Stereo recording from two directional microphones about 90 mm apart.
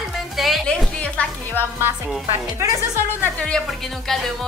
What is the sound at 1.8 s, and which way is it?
Speech, 25° right (ahead or behind).